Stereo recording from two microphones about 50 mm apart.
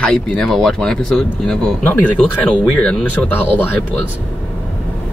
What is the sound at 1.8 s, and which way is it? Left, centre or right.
Speech, left.